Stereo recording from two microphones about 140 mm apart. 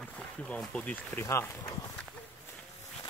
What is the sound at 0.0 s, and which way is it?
Speech, 10° left (ahead or behind).